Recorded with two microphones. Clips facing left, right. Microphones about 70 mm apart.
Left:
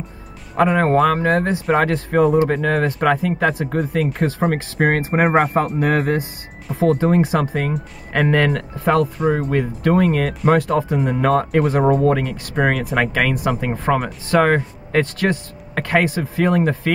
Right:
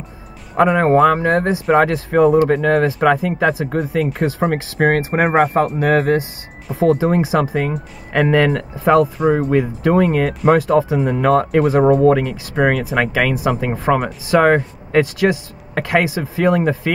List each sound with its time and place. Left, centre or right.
0.6 s speech: centre